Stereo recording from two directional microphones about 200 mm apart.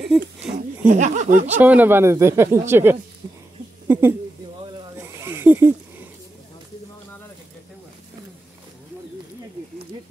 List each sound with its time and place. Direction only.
0.5 s speech: 40° right (ahead or behind)
1.5 s speech: 10° right (ahead or behind)
4.9 s a sound: 10° right (ahead or behind)